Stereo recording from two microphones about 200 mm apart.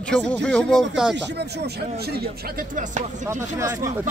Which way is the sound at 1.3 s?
55° right (ahead or behind).